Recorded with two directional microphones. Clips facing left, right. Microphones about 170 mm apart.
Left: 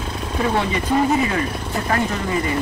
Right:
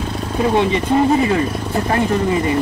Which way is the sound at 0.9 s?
25° right (ahead or behind).